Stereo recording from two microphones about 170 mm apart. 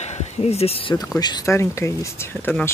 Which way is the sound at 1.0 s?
25° left (ahead or behind).